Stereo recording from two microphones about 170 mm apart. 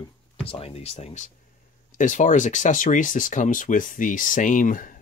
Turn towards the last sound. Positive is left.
turn(degrees=50)  # may be behind; listen again after turning